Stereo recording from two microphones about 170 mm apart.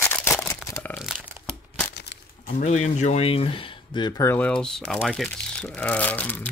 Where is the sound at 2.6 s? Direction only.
45° left (ahead or behind).